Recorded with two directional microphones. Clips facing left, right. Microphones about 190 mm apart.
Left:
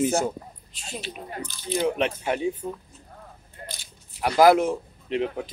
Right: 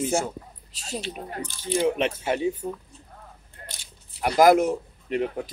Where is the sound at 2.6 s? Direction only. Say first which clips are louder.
Right 1 dB; 30° right (ahead or behind).